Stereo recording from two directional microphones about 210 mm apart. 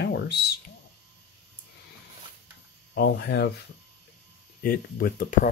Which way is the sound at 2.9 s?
50° left (ahead or behind).